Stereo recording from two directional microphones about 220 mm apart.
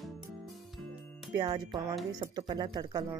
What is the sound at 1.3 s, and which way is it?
Speech, 20° right (ahead or behind).